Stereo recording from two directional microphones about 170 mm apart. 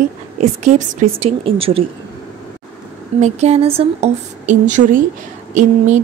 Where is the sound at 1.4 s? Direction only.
35° right (ahead or behind).